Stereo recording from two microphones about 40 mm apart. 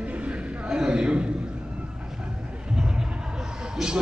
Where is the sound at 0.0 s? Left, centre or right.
Right.